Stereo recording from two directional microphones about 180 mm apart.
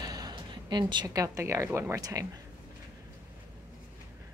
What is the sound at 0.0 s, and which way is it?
A woman's voice, 20° right (ahead or behind).